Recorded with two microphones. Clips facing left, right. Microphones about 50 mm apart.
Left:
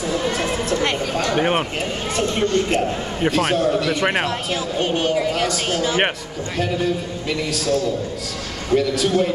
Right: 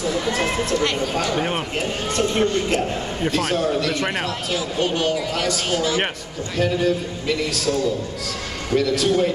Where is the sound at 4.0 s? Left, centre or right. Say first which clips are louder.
Left 4 dB; left.